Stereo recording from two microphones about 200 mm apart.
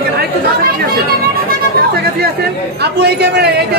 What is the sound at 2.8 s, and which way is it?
Speech, 55° right (ahead or behind).